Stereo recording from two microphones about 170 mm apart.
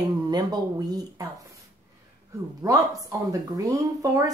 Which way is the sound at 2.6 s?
20° right (ahead or behind).